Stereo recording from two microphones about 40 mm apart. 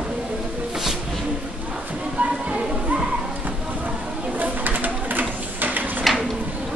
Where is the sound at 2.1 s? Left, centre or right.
Right.